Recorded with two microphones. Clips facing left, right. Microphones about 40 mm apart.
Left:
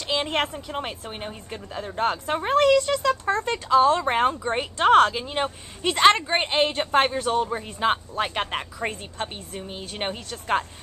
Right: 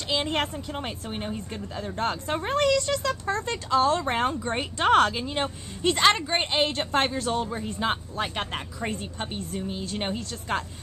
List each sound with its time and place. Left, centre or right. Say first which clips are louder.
0.2 s a woman's voice: left 2 dB; centre